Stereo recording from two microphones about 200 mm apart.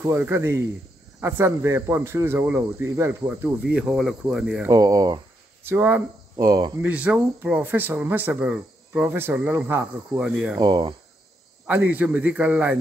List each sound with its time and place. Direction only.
0.0 s speech: 10° right (ahead or behind)
4.6 s speech: 15° right (ahead or behind)
6.9 s speech: 5° right (ahead or behind)
10.6 s speech: 20° right (ahead or behind)
11.6 s speech: 10° right (ahead or behind)